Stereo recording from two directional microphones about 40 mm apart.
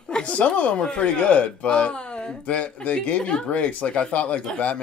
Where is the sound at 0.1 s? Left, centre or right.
Left.